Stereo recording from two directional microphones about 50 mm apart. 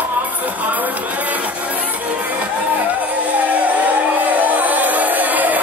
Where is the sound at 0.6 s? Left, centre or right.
Right.